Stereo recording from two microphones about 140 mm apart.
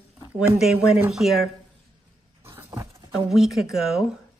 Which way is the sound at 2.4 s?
15° right (ahead or behind).